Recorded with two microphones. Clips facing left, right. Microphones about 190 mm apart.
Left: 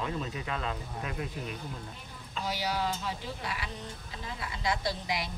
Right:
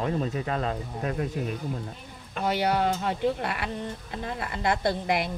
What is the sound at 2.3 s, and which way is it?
Speech, 60° right (ahead or behind).